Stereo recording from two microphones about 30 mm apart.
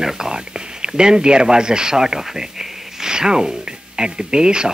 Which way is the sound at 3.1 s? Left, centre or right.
Right.